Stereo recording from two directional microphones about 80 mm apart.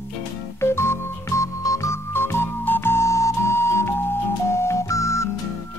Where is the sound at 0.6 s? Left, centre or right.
Left.